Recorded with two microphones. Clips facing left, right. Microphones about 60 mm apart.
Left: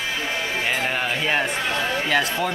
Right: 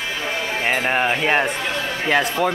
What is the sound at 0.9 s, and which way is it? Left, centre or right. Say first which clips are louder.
Speech: right 5 dB; right.